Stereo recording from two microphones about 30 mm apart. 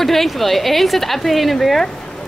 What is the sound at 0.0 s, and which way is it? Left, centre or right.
Speech, centre.